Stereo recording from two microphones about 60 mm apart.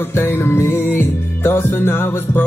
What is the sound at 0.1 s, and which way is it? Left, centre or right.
Music, left.